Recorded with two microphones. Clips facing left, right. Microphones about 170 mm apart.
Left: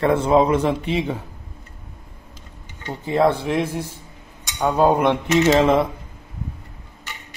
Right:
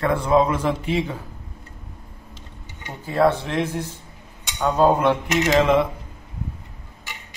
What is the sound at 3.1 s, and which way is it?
A man's voice, 15° left (ahead or behind).